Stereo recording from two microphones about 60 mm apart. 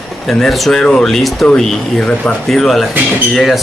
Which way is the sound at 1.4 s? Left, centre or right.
Centre.